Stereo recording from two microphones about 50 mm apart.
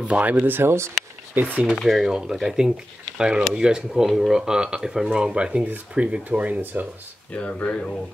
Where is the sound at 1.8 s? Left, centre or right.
Centre.